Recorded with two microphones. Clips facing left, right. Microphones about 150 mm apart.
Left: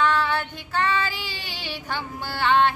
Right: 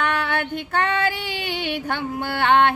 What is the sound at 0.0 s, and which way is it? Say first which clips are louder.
Female singing: left 1 dB; 60° right (ahead or behind).